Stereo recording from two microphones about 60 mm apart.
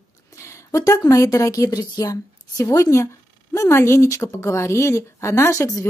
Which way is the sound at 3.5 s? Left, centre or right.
Left.